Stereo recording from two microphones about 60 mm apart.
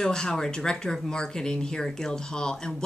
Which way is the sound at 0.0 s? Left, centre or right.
Centre.